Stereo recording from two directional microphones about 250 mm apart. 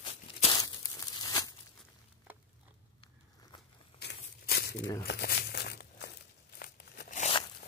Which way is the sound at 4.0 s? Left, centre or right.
Left.